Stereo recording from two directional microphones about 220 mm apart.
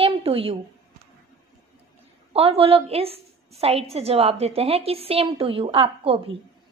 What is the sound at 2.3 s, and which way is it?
A woman's voice, 25° right (ahead or behind).